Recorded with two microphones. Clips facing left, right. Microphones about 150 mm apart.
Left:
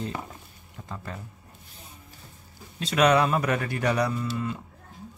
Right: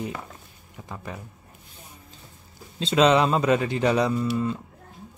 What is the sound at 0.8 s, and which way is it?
Speech, 15° right (ahead or behind).